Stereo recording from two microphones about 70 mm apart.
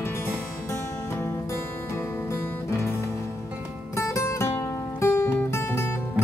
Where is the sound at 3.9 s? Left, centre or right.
Left.